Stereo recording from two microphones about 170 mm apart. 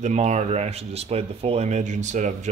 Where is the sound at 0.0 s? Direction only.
40° right (ahead or behind).